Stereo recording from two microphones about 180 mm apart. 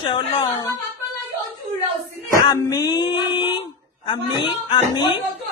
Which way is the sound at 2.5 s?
20° left (ahead or behind).